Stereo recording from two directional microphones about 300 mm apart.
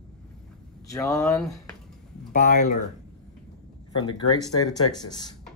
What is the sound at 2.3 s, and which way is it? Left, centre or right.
Speech, left.